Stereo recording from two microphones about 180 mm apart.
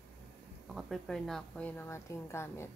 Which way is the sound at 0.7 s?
Centre (ahead or behind).